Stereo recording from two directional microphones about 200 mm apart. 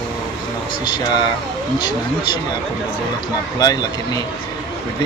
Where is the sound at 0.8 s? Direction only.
20° left (ahead or behind).